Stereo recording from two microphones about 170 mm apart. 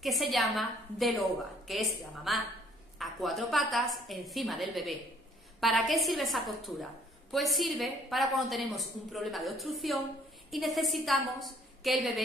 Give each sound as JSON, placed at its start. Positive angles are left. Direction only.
{"t": 0.0, "sound": "a woman's voice", "side_deg": 0}